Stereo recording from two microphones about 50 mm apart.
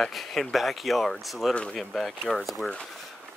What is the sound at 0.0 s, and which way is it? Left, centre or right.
Speech, centre.